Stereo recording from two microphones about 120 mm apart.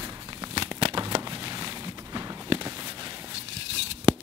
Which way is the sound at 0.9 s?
45° right (ahead or behind).